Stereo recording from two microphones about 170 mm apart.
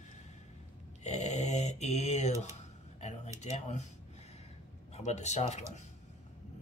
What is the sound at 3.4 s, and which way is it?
Speech, 40° left (ahead or behind).